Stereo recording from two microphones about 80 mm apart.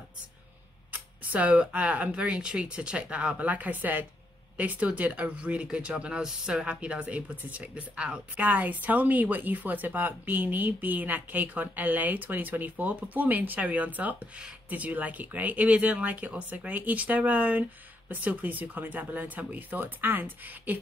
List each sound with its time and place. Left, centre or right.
0.9 s speech: centre